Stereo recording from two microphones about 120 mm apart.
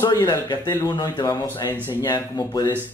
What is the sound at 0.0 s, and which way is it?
Speech, 35° left (ahead or behind).